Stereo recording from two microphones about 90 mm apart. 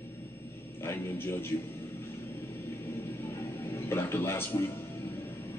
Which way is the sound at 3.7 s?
30° left (ahead or behind).